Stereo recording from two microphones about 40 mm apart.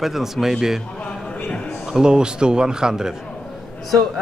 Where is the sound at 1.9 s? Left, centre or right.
Centre.